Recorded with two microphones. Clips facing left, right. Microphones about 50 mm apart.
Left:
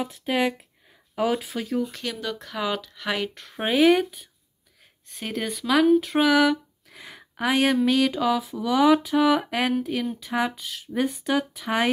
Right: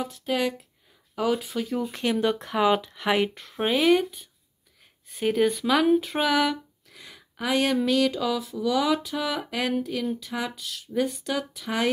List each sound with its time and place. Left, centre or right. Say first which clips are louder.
0.0 s speech: left 2 dB; centre
1.4 s speech: even; centre
1.9 s speech: right 7 dB; right
3.3 s speech: left 3 dB; centre
6.9 s a sound: left 8 dB; left
7.4 s speech: left 3 dB; centre